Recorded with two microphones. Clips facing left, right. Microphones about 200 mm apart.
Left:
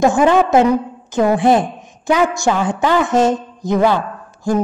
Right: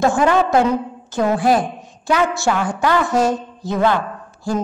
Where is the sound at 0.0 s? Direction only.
20° left (ahead or behind).